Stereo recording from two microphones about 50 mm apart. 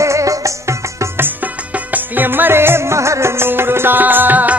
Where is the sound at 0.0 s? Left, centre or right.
Right.